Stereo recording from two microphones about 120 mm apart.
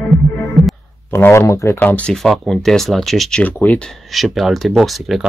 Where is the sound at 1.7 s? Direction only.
15° left (ahead or behind).